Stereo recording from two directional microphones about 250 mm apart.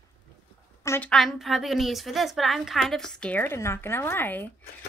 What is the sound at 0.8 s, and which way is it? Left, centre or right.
A woman's voice, centre.